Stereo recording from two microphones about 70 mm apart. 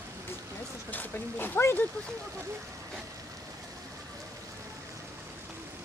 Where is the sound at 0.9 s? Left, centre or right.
Left.